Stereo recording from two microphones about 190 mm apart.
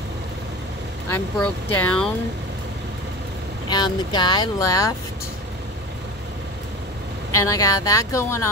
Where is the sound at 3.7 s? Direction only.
25° left (ahead or behind).